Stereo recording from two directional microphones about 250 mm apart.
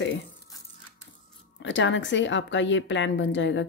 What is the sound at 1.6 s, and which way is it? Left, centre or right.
A woman's voice, left.